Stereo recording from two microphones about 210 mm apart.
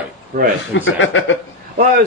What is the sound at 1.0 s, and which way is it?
Speech, 65° left (ahead or behind).